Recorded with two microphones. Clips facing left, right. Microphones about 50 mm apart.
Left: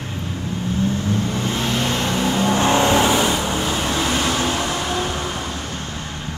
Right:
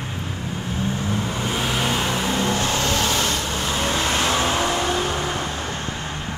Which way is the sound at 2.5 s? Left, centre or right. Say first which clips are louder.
Left 6 dB; left.